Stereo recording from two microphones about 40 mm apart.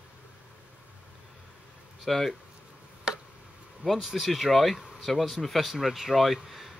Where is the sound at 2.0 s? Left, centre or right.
Centre.